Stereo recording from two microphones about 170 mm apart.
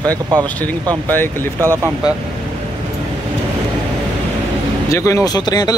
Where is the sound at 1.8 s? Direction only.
10° right (ahead or behind).